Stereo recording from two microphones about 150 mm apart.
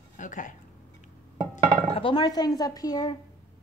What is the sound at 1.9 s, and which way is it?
Speech, 35° left (ahead or behind).